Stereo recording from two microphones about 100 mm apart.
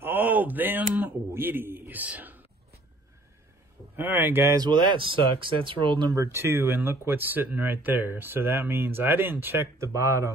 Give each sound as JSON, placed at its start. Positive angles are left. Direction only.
{"t": 0.0, "sound": "a sound", "side_deg": -20}
{"t": 3.9, "sound": "speech", "side_deg": -20}
{"t": 4.6, "sound": "speech", "side_deg": -50}
{"t": 6.1, "sound": "speech", "side_deg": -25}